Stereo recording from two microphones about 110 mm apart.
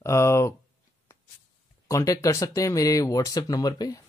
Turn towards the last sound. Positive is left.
turn(degrees=35)  # may be behind; listen again after turning